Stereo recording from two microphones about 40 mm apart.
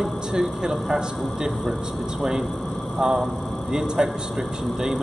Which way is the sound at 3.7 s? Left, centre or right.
Centre.